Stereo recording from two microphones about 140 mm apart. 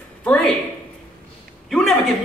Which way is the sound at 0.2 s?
5° left (ahead or behind).